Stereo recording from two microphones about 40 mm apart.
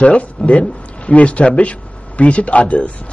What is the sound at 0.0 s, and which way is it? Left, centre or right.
Speech, left.